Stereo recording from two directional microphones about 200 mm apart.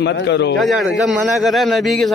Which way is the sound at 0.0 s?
60° left (ahead or behind).